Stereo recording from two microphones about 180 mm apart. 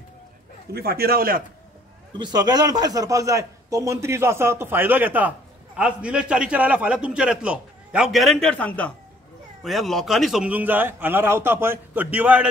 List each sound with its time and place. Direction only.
0.7 s a man's voice: 60° right (ahead or behind)
2.1 s a man's voice: 25° right (ahead or behind)